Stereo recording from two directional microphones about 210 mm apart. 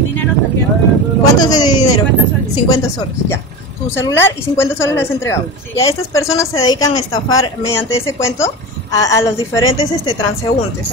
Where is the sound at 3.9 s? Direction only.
10° left (ahead or behind).